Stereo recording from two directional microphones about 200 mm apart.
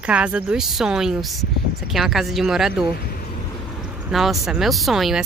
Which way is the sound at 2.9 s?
50° left (ahead or behind).